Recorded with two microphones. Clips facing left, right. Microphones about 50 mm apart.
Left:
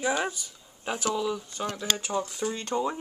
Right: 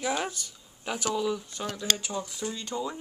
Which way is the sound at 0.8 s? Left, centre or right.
Centre.